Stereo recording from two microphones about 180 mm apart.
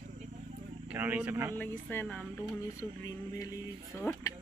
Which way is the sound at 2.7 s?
20° left (ahead or behind).